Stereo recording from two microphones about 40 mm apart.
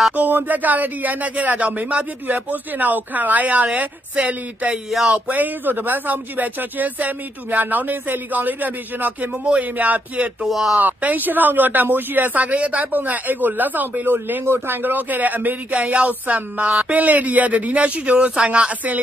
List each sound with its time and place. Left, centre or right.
0.1 s speech: right
9.4 s speech: right
9.8 s speech: right
10.5 s speech: centre
10.8 s speech: right